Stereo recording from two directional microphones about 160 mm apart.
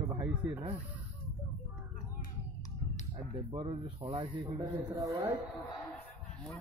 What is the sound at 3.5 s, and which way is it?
Speech, 40° right (ahead or behind).